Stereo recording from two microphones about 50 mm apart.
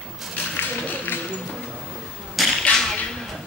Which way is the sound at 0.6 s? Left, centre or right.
Left.